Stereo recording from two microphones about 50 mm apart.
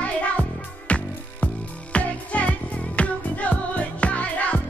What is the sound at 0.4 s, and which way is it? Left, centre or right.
Music, left.